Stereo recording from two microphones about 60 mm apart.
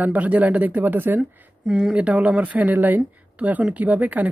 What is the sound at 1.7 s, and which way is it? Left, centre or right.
Speech, centre.